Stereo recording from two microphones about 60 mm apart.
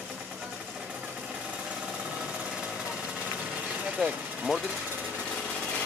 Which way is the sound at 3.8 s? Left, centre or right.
Centre.